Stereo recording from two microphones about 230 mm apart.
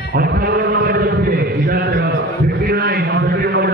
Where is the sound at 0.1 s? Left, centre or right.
Right.